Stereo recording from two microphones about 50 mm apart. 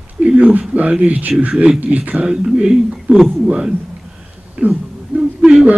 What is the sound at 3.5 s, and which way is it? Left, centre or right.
Speech, right.